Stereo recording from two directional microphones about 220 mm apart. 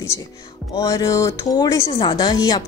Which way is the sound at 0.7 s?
15° left (ahead or behind).